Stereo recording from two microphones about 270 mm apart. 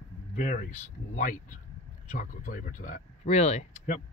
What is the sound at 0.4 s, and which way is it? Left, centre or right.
Speech, left.